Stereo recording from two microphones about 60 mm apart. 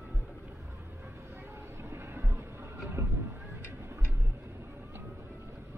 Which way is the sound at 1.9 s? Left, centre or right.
Right.